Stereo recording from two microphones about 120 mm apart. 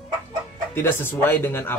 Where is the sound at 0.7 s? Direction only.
20° left (ahead or behind).